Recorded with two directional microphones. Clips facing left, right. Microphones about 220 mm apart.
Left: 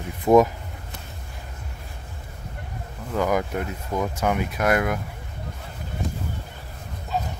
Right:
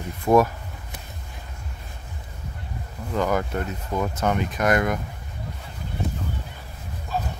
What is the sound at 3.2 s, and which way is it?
Speech, 10° left (ahead or behind).